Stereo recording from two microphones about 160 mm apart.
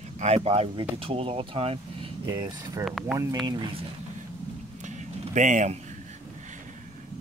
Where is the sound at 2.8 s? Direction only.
Centre (ahead or behind).